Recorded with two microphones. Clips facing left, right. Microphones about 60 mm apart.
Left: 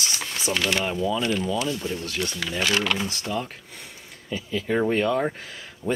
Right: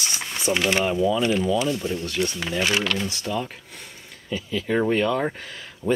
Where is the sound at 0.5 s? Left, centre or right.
Right.